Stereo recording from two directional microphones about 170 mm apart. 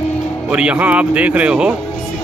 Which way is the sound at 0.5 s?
5° right (ahead or behind).